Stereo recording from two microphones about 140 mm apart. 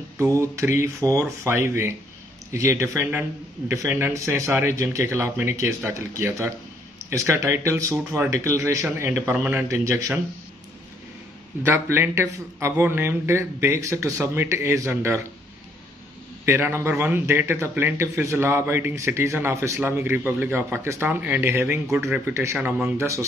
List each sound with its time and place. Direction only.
0.2 s a man's voice: 20° right (ahead or behind)
11.6 s speech: 15° right (ahead or behind)
16.4 s a man's voice: 15° right (ahead or behind)
22.7 s speech: 5° right (ahead or behind)
22.9 s speech: 20° right (ahead or behind)